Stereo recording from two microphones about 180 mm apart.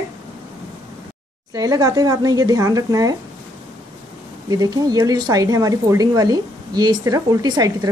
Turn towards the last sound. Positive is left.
turn(degrees=-20)  # may be behind; listen again after turning